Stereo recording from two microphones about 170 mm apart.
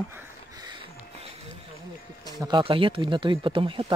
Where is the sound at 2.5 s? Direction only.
30° right (ahead or behind).